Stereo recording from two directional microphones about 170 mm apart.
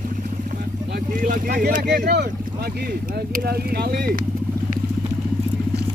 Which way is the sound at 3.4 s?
65° right (ahead or behind).